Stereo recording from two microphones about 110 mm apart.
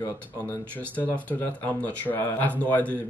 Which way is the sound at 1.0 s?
15° left (ahead or behind).